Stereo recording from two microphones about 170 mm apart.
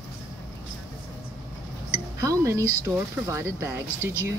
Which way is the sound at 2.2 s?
20° right (ahead or behind).